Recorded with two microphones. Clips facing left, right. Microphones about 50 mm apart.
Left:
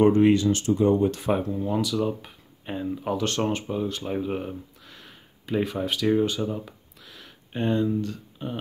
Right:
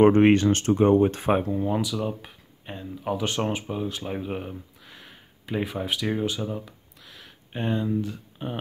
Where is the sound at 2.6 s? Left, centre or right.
Centre.